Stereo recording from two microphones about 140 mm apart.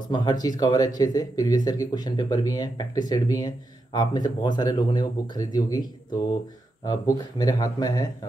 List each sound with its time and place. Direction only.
0.1 s speech: 30° left (ahead or behind)